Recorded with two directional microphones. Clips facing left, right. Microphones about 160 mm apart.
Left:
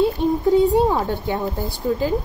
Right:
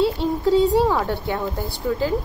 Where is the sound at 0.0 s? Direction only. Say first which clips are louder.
Left 2 dB; 20° left (ahead or behind).